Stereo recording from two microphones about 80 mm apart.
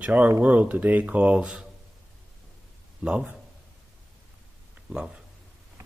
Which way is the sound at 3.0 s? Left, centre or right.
Centre.